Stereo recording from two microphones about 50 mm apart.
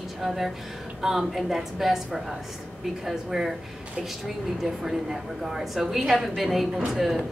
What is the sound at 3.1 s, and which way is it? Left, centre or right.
Speech, centre.